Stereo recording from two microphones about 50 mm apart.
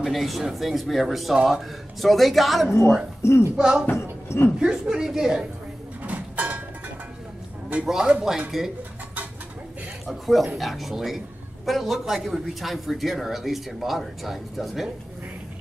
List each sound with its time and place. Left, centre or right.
0.0 s speech: centre
3.2 s speech: left
3.5 s a woman's voice: centre
3.9 s a sound: left
4.6 s a woman's voice: centre
6.0 s a sound: right
7.8 s a woman's voice: centre
10.0 s speech: centre